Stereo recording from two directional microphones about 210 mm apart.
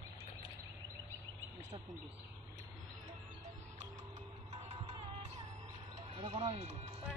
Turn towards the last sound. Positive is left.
turn(degrees=-30)  # may be behind; listen again after turning